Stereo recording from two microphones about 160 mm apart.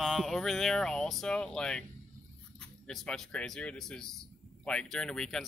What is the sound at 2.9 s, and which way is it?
Speech, centre (ahead or behind).